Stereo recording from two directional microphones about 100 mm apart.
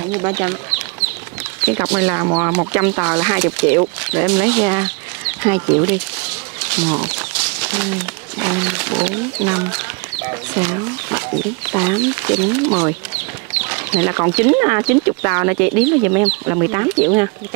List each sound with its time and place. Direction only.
0.1 s speech: 25° right (ahead or behind)